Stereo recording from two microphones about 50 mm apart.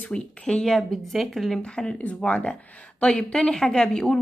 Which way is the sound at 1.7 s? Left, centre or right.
Centre.